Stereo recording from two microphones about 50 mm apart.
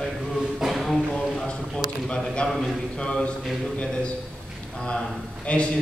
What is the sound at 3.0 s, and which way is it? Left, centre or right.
Speech, left.